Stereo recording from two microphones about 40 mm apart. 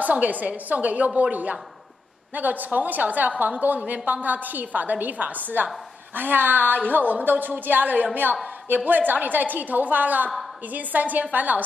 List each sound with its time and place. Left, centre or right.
0.0 s a woman's voice: right